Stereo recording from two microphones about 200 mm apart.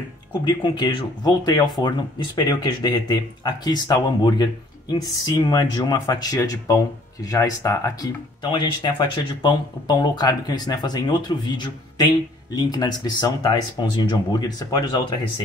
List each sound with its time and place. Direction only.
0.5 s speech: 20° left (ahead or behind)